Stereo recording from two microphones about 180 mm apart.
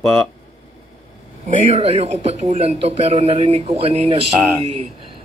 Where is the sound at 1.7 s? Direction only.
35° right (ahead or behind).